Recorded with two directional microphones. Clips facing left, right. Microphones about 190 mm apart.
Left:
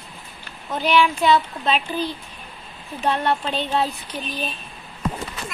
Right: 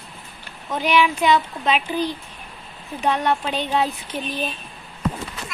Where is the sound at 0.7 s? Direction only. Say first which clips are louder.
Even; 15° right (ahead or behind).